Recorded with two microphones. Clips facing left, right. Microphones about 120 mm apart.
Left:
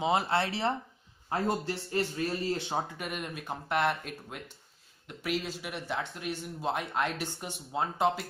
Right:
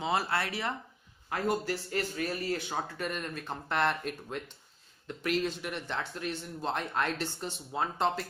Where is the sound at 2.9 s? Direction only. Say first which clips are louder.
Right 2 dB; 10° left (ahead or behind).